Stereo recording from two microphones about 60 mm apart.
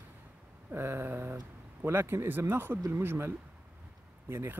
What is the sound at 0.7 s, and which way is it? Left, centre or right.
Speech, right.